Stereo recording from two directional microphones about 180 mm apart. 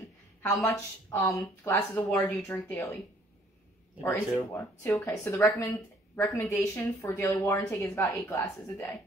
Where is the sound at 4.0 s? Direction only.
15° left (ahead or behind).